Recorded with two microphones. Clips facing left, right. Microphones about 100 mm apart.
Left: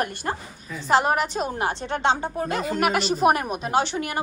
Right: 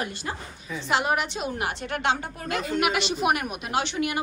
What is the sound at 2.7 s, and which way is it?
A woman's voice, 40° left (ahead or behind).